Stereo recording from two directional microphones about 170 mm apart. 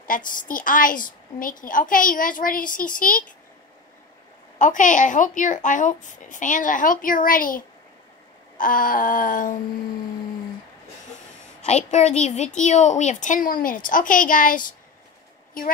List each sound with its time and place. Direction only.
0.0 s a woman's voice: 55° left (ahead or behind)
4.6 s a woman's voice: 50° left (ahead or behind)
11.6 s a woman's voice: 40° left (ahead or behind)